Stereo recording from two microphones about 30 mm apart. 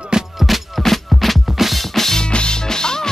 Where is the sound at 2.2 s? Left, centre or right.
Left.